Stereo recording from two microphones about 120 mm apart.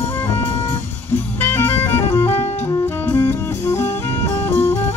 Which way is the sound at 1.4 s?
20° left (ahead or behind).